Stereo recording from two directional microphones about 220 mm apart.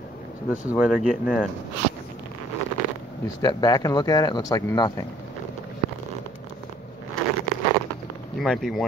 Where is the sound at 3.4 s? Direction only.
15° left (ahead or behind).